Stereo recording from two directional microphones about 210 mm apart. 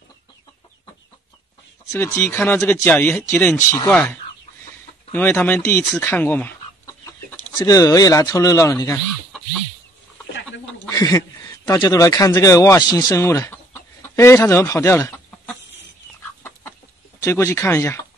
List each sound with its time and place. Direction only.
1.9 s speech: 15° left (ahead or behind)
5.7 s chicken: 10° left (ahead or behind)
7.5 s speech: 15° left (ahead or behind)
10.9 s a man's voice: 15° left (ahead or behind)
17.2 s speech: 10° left (ahead or behind)